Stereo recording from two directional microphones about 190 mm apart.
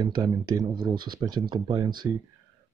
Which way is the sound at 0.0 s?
20° right (ahead or behind).